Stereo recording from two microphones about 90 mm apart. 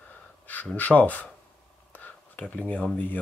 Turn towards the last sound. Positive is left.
turn(degrees=15)  # may be behind; listen again after turning